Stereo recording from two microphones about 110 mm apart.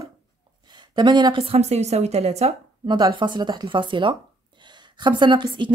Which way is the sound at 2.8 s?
45° right (ahead or behind).